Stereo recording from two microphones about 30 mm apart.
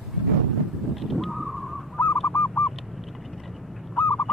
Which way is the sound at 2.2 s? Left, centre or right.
Left.